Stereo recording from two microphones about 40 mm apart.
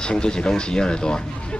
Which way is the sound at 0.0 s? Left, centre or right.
Left.